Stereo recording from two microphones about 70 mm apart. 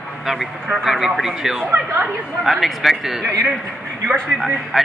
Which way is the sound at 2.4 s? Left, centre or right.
Centre.